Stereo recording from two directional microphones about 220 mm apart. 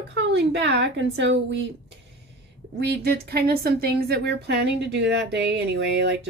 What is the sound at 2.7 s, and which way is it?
Speech, 45° right (ahead or behind).